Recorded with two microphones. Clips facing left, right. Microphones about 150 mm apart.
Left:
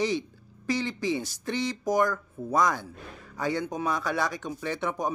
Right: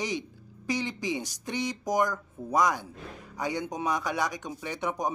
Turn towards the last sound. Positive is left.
turn(degrees=-15)  # may be behind; listen again after turning